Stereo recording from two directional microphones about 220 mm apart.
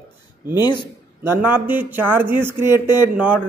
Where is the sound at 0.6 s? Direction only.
20° left (ahead or behind).